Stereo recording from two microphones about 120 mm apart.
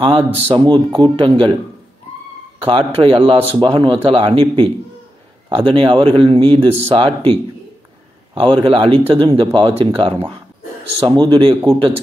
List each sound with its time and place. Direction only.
0.0 s a man's voice: 50° right (ahead or behind)
0.7 s a man's voice: 40° right (ahead or behind)
2.6 s a man's voice: 50° right (ahead or behind)
8.4 s a man's voice: 45° right (ahead or behind)